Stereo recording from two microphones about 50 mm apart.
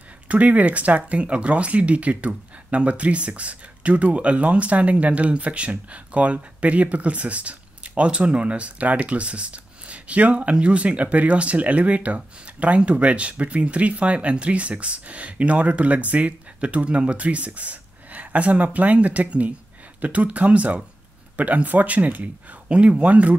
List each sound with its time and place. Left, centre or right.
0.3 s speech: right